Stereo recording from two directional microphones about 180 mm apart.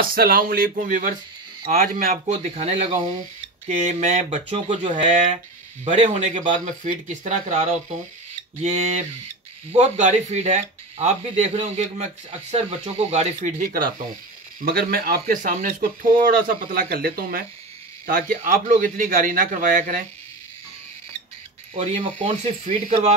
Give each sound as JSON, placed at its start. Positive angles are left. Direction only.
{"t": 0.0, "sound": "speech", "side_deg": -55}
{"t": 2.3, "sound": "speech", "side_deg": -35}
{"t": 21.7, "sound": "speech", "side_deg": -40}